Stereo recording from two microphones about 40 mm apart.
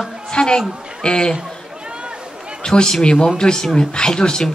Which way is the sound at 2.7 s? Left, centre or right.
Centre.